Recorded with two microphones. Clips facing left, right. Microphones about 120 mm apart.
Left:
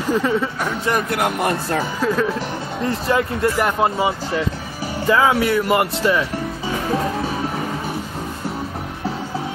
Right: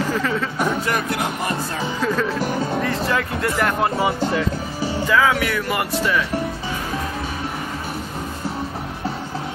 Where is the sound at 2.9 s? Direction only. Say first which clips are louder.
Left 2 dB; 20° left (ahead or behind).